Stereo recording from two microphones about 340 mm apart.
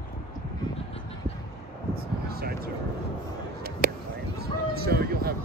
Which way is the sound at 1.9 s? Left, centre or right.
Right.